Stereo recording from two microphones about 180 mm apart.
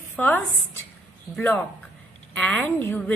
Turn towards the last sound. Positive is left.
turn(degrees=10)  # may be behind; listen again after turning